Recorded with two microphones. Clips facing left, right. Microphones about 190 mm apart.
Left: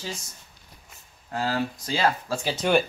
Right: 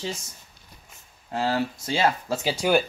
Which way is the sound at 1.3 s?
25° right (ahead or behind).